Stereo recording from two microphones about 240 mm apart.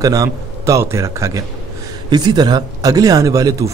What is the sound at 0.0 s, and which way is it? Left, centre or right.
Speech, centre.